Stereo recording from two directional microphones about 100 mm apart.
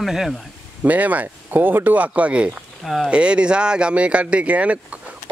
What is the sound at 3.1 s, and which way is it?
Speech, 10° right (ahead or behind).